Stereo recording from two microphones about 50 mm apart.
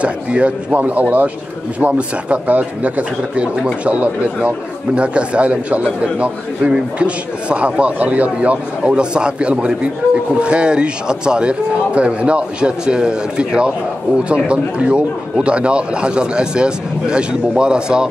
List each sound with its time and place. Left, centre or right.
0.0 s a man's voice: right